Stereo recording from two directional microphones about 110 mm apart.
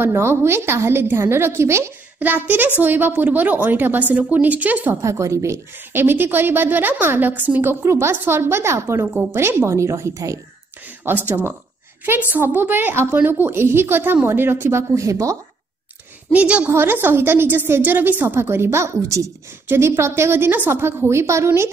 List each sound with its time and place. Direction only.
0.0 s a woman's voice: 20° right (ahead or behind)
5.2 s a woman's voice: 25° right (ahead or behind)
11.1 s a woman's voice: 20° right (ahead or behind)
16.3 s a woman's voice: 10° right (ahead or behind)